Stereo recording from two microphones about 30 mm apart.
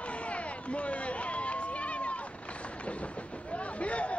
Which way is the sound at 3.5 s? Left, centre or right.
Left.